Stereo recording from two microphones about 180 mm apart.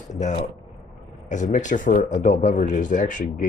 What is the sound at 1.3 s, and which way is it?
Speech, 45° left (ahead or behind).